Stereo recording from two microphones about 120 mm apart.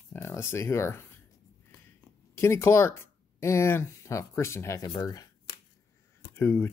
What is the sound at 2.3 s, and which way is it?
Speech, 20° left (ahead or behind).